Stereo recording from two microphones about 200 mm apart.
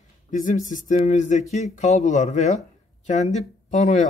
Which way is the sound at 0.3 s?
40° left (ahead or behind).